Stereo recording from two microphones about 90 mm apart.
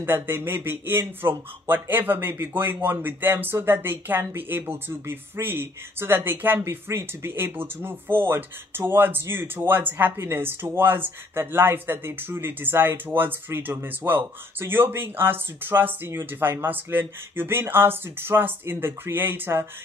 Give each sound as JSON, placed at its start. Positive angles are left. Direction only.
{"t": 0.0, "sound": "speech", "side_deg": -25}